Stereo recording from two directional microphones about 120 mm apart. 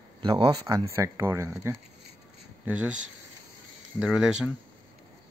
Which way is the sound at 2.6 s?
10° right (ahead or behind).